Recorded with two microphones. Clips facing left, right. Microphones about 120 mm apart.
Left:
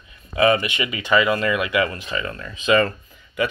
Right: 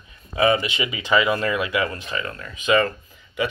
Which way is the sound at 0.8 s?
15° right (ahead or behind).